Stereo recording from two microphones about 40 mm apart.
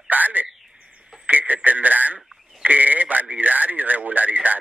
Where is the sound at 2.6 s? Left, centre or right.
Right.